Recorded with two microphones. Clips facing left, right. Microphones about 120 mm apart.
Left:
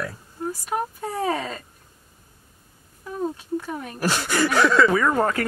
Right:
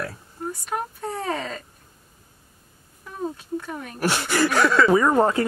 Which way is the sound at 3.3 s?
5° left (ahead or behind).